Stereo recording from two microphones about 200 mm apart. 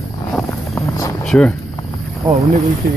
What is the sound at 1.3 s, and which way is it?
Speech, 5° left (ahead or behind).